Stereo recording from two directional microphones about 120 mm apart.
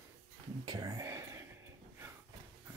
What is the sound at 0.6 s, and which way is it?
Speech, 35° right (ahead or behind).